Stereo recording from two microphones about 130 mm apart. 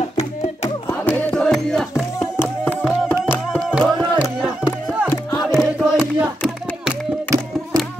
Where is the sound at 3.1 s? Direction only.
15° left (ahead or behind).